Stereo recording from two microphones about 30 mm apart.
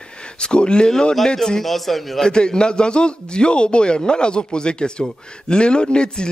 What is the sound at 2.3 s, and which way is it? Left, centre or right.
A man's voice, left.